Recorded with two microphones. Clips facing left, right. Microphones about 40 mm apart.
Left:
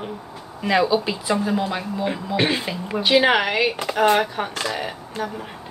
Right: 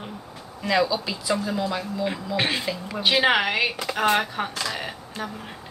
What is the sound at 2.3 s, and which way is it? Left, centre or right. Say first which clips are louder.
Speech: left 4 dB; centre.